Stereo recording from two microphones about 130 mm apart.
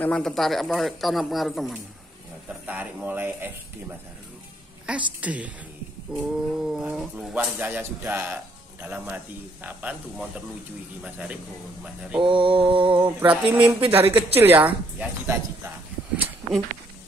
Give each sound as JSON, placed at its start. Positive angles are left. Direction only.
{"t": 0.0, "sound": "speech", "side_deg": 5}
{"t": 2.6, "sound": "a woman's voice", "side_deg": -15}
{"t": 4.8, "sound": "a woman's voice", "side_deg": -10}
{"t": 12.2, "sound": "mantra", "side_deg": -40}
{"t": 13.2, "sound": "a woman's voice", "side_deg": -10}